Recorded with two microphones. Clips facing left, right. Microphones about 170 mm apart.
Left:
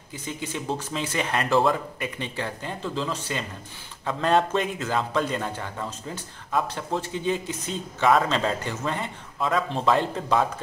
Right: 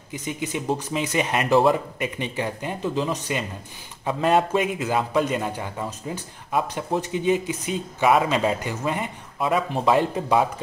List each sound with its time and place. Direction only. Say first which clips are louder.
0.1 s a man's voice: right 4 dB; 15° right (ahead or behind)